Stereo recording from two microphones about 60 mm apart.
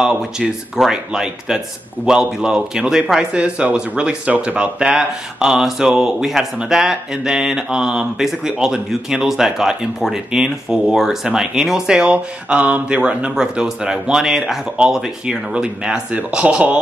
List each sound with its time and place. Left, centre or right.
0.0 s speech: centre